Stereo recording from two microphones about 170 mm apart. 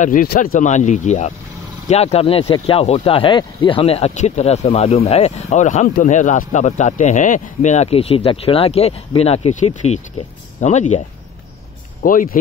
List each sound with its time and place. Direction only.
0.0 s speech: 55° left (ahead or behind)
12.0 s speech: 55° left (ahead or behind)